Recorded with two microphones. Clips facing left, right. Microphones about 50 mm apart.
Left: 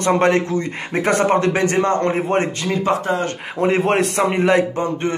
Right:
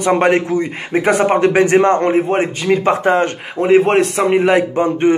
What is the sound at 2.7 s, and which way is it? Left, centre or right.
Speech, right.